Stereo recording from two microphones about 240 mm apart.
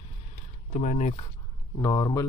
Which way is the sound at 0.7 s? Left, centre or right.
Left.